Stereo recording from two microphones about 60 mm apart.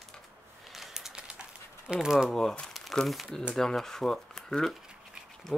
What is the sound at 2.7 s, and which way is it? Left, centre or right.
Speech, centre.